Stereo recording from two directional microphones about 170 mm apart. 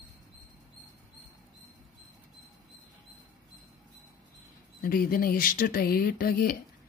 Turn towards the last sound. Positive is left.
turn(degrees=60)  # may be behind; listen again after turning